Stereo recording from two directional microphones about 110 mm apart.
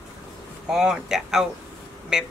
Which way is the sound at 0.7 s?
5° right (ahead or behind).